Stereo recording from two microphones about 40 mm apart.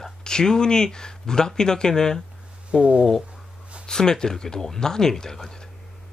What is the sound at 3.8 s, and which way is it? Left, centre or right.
Speech, centre.